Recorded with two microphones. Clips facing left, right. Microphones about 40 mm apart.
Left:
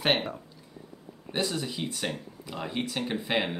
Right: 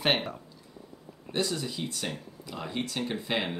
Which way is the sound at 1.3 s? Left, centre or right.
Centre.